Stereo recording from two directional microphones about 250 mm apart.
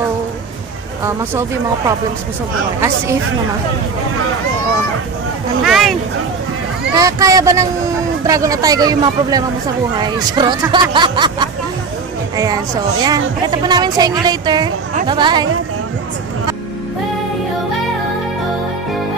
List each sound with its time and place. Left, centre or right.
5.6 s speech: centre
7.0 s speech: centre
13.0 s speech: centre